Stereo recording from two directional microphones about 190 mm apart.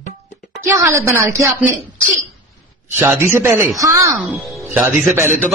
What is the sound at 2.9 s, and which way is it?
A woman's voice, 15° right (ahead or behind).